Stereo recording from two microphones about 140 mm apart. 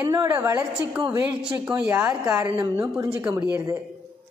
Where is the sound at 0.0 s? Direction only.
25° right (ahead or behind).